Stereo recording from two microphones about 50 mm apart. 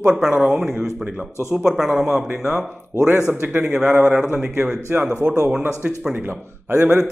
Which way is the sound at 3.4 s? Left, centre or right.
Right.